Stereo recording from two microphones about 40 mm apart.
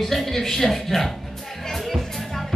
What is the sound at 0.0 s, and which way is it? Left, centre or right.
Speech, centre.